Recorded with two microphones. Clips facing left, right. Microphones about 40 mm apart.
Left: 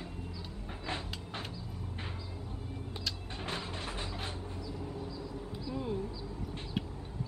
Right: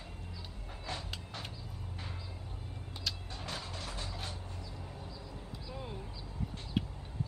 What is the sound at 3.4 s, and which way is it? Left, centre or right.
Music, left.